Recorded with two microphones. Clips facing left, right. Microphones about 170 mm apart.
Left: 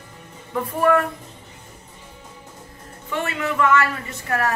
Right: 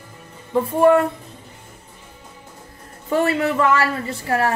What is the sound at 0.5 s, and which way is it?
Speech, 25° right (ahead or behind).